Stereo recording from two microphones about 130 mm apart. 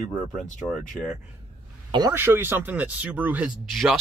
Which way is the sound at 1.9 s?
30° right (ahead or behind).